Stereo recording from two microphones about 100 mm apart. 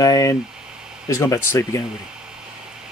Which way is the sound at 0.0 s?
35° left (ahead or behind).